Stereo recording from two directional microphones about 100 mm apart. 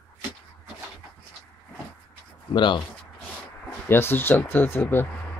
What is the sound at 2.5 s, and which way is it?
Speech, 50° left (ahead or behind).